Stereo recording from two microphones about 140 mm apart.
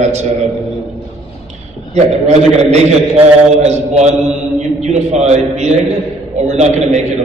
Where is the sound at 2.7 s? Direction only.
50° right (ahead or behind).